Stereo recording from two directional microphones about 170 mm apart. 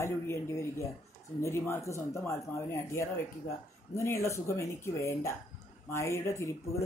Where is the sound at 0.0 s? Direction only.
15° left (ahead or behind).